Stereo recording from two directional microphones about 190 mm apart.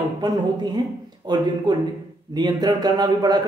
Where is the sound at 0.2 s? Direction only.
20° right (ahead or behind).